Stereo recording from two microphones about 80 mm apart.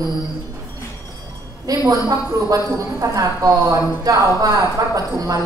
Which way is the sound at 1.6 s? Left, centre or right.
Right.